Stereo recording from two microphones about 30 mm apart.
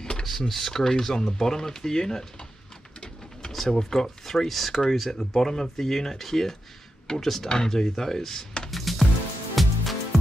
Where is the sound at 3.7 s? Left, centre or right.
Centre.